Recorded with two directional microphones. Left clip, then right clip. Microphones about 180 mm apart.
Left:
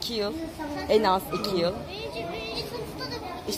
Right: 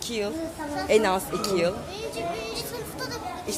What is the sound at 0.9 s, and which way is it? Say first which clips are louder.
A woman's voice: even; 15° right (ahead or behind).